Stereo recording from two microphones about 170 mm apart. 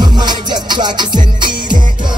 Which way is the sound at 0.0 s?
25° right (ahead or behind).